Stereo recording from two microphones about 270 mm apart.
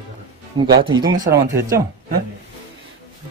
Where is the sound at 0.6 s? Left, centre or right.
Centre.